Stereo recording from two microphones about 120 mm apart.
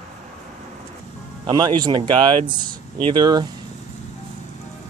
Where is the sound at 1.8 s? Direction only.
40° right (ahead or behind).